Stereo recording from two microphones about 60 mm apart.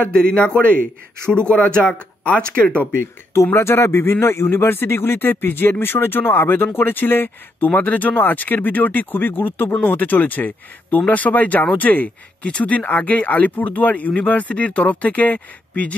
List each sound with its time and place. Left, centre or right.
0.0 s speech: left
3.5 s speech: left